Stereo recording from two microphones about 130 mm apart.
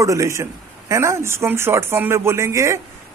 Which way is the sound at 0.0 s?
25° right (ahead or behind).